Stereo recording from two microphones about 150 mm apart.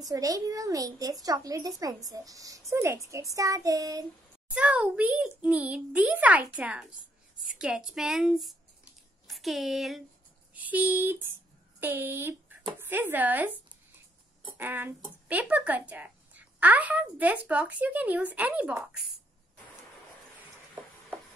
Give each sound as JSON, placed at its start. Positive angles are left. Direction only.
{"t": 0.0, "sound": "a child's voice", "side_deg": -25}
{"t": 4.6, "sound": "a woman's voice", "side_deg": -5}
{"t": 14.6, "sound": "a woman's voice", "side_deg": -15}